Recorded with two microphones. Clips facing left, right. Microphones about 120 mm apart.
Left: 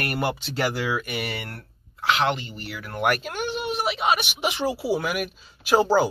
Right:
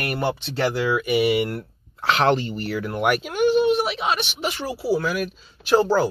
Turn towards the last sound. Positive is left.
turn(degrees=10)  # may be behind; listen again after turning